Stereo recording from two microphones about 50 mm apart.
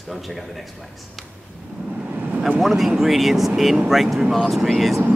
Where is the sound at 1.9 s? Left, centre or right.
Right.